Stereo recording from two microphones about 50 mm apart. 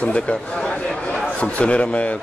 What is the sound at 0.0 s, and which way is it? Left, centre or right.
Speech, left.